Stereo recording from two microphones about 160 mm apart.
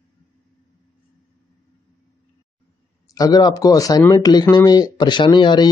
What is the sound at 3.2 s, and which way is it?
Speech, 25° left (ahead or behind).